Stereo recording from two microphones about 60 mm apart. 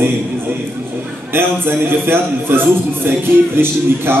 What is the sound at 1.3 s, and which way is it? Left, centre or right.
A man's voice, right.